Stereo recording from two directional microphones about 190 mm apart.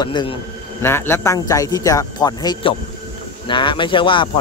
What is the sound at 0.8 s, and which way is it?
Speech, 10° left (ahead or behind).